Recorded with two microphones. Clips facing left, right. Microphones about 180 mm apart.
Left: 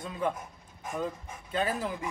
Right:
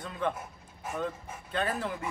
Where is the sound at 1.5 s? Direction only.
5° left (ahead or behind).